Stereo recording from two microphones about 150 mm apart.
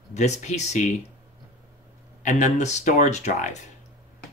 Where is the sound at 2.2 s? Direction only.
50° left (ahead or behind).